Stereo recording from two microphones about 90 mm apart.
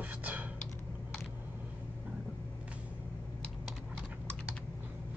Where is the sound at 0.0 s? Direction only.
15° right (ahead or behind).